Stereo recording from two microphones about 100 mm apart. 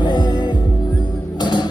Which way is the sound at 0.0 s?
45° left (ahead or behind).